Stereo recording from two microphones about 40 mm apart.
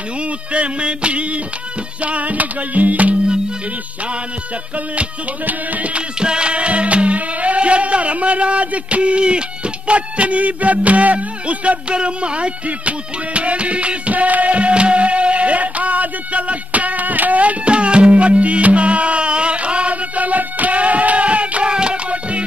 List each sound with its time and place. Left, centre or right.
0.5 s music: right
5.9 s music: right